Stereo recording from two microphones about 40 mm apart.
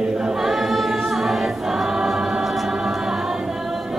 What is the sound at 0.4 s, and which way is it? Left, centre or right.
Choir, centre.